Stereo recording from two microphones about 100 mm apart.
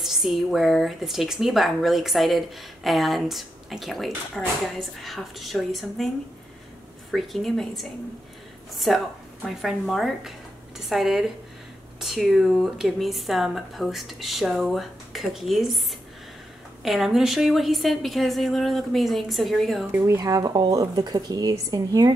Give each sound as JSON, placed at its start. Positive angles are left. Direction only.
{"t": 0.0, "sound": "speech", "side_deg": 0}
{"t": 16.8, "sound": "speech", "side_deg": -5}
{"t": 20.2, "sound": "a woman's voice", "side_deg": -40}